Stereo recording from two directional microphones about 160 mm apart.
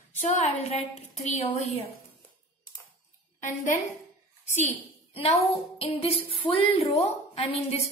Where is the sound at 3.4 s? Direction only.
55° left (ahead or behind).